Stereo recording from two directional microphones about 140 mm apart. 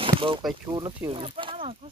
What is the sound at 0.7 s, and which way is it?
Speech, 35° right (ahead or behind).